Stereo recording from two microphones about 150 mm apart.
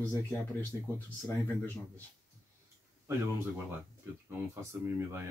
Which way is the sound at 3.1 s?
15° right (ahead or behind).